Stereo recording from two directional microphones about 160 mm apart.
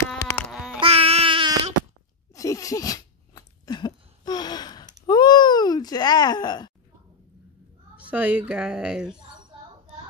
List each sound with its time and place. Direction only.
0.7 s baby cry: 35° right (ahead or behind)
2.3 s sneeze: 20° left (ahead or behind)
5.0 s a sound: 25° left (ahead or behind)
7.9 s a woman's voice: 10° right (ahead or behind)